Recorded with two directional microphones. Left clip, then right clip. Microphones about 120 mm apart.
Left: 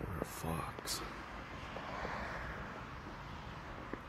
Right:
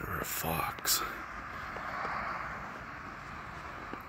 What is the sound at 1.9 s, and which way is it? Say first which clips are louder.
Vehicle: right 7 dB; 70° left (ahead or behind).